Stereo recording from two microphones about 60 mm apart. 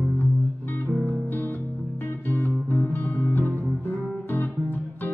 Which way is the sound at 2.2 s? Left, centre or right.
Left.